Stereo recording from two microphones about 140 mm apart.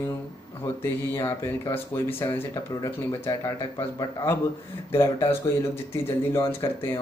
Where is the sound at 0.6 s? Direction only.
20° left (ahead or behind).